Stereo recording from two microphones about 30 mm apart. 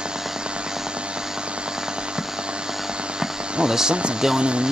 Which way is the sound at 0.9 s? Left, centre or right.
Right.